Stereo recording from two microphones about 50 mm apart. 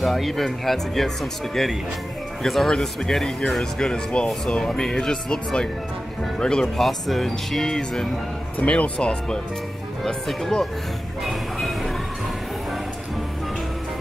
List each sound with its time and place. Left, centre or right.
0.0 s speech: centre
6.8 s speech: centre
8.5 s speech: left
10.0 s speech: centre
11.2 s music: centre